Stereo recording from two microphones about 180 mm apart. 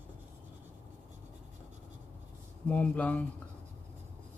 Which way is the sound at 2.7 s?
10° left (ahead or behind).